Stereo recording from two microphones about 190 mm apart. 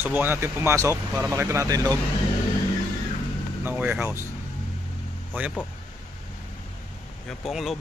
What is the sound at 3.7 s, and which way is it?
Speech, 10° right (ahead or behind).